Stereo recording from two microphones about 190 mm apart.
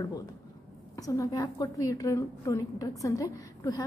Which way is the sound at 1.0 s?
20° left (ahead or behind).